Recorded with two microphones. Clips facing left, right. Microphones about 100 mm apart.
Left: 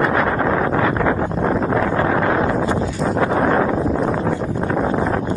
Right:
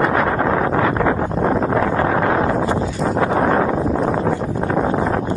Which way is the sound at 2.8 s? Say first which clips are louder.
Even; centre (ahead or behind).